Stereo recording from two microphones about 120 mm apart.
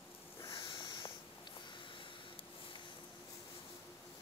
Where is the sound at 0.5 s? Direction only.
45° left (ahead or behind).